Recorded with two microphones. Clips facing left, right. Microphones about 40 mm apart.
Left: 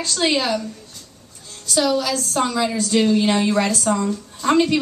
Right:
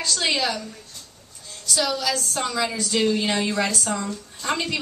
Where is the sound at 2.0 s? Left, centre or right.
Left.